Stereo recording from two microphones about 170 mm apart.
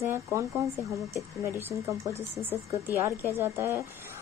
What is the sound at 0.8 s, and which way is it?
Speech, 20° left (ahead or behind).